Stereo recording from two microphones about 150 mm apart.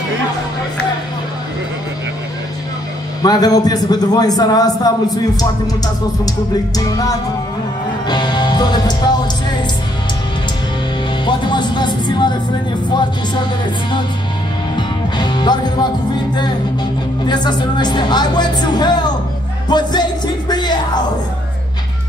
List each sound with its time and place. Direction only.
3.2 s a man's voice: 25° left (ahead or behind)
6.8 s a man's voice: 25° left (ahead or behind)
8.1 s music: 30° left (ahead or behind)
11.2 s a man's voice: 30° left (ahead or behind)
14.8 s music: 30° left (ahead or behind)
17.3 s a man's voice: 30° left (ahead or behind)
19.7 s music: 30° left (ahead or behind)